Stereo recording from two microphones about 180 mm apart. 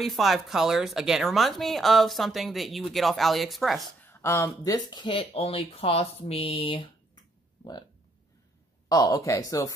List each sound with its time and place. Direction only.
0.0 s speech: centre (ahead or behind)
4.0 s speech: 15° left (ahead or behind); by 6.9 s 30° left (ahead or behind)
8.8 s speech: 20° left (ahead or behind)